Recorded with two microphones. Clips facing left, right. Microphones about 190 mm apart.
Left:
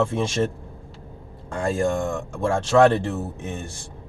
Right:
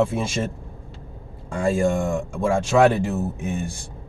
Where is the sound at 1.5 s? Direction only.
10° right (ahead or behind).